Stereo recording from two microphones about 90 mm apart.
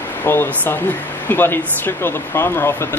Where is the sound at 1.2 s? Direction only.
25° left (ahead or behind).